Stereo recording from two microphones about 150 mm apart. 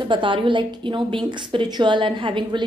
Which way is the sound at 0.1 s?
35° right (ahead or behind).